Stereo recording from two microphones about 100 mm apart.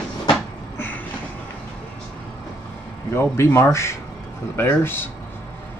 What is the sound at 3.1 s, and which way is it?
Speech, 25° left (ahead or behind).